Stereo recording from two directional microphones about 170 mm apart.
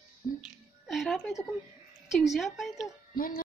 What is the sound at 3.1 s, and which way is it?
Music, 55° left (ahead or behind).